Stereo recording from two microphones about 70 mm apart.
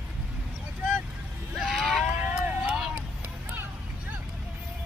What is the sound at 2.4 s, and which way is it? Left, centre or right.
Vehicle, centre.